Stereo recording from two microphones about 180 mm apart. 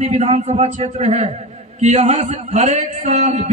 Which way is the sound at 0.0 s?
35° right (ahead or behind).